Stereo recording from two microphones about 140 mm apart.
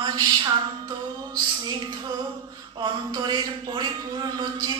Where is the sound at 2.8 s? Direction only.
30° right (ahead or behind).